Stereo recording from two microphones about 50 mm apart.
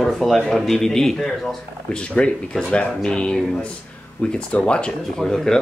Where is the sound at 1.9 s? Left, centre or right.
Left.